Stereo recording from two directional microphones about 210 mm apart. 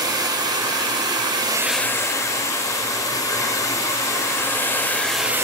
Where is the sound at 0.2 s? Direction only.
20° right (ahead or behind).